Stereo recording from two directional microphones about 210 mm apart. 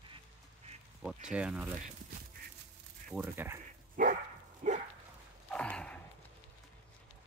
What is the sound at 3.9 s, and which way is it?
Dog, 40° right (ahead or behind).